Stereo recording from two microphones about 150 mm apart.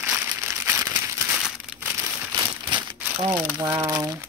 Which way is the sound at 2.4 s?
30° right (ahead or behind).